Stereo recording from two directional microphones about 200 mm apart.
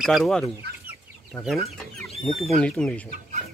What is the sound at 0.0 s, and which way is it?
Speech, centre (ahead or behind).